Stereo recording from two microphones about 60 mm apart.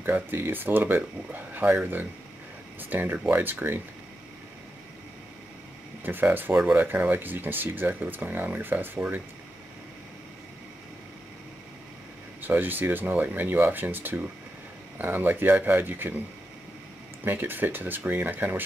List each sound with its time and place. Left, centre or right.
0.0 s speech: right
6.0 s speech: right
12.4 s speech: right
17.2 s speech: right